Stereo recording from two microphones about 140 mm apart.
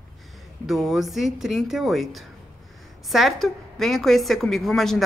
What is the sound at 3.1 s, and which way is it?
A woman's voice, centre (ahead or behind).